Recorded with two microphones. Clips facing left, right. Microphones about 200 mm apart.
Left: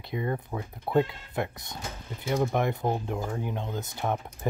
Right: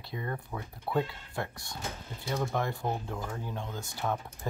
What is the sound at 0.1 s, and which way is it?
Speech, 15° left (ahead or behind).